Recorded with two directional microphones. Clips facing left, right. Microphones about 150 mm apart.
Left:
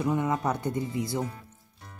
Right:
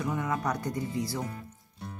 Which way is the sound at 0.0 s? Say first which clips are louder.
Left 4 dB; 25° left (ahead or behind).